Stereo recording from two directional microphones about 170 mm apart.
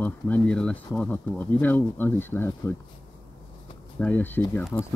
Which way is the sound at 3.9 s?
10° left (ahead or behind).